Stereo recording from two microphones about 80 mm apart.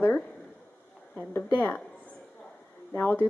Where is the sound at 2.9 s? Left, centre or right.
Left.